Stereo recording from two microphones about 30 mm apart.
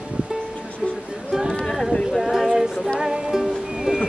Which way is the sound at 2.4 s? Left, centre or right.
Centre.